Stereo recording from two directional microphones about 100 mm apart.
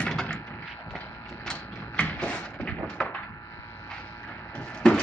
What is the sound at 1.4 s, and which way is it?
Mechanisms, 10° left (ahead or behind).